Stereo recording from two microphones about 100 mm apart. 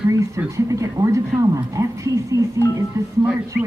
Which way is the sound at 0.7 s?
35° right (ahead or behind).